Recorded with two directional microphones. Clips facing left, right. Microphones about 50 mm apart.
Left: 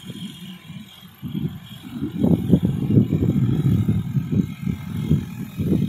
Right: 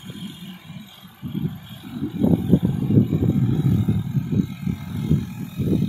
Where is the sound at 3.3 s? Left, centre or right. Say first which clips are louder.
Even; centre.